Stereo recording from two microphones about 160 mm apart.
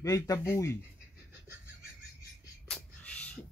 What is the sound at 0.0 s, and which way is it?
Speech, 20° left (ahead or behind).